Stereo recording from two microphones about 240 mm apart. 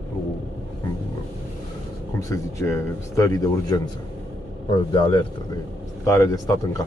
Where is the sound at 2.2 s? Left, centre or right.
Centre.